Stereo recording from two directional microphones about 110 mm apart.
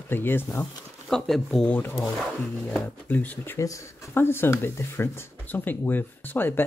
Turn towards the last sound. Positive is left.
turn(degrees=20)  # may be behind; listen again after turning